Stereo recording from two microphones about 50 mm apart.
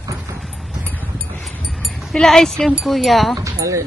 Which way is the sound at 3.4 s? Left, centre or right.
Right.